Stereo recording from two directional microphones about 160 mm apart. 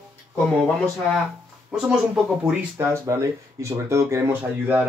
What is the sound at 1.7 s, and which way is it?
Speech, 5° right (ahead or behind).